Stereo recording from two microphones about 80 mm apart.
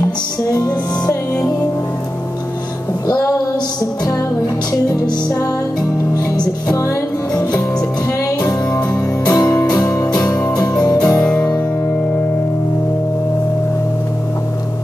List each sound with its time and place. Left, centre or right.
0.5 s music: left
3.1 s music: left
5.8 s music: left
9.2 s music: left
11.2 s music: centre